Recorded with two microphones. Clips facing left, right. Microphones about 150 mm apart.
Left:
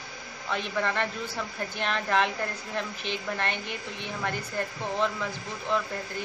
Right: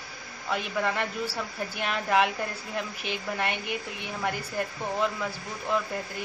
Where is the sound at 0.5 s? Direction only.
10° right (ahead or behind).